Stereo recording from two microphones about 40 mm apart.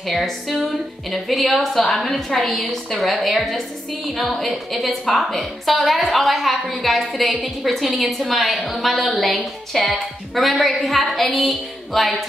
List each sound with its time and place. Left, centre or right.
0.0 s a woman's voice: centre